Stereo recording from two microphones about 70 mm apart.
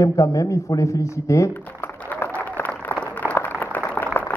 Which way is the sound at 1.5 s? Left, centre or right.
Left.